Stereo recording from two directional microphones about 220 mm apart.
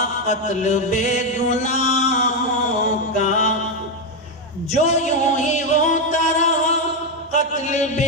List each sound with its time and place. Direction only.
0.3 s chant: 30° left (ahead or behind)
3.2 s mantra: 35° left (ahead or behind)
4.7 s music: 30° left (ahead or behind)
7.3 s chant: 35° left (ahead or behind)